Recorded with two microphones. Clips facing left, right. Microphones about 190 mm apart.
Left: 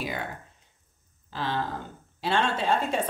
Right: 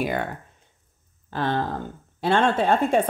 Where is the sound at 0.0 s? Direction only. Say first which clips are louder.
Right 7 dB; 55° right (ahead or behind).